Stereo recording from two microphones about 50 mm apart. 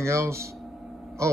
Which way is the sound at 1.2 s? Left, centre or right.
Right.